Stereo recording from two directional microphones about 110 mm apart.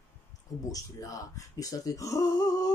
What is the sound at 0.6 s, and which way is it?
Speech, 30° left (ahead or behind).